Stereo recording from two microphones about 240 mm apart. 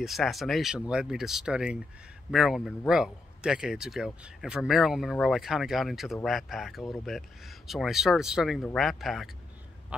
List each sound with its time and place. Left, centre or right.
0.0 s speech: centre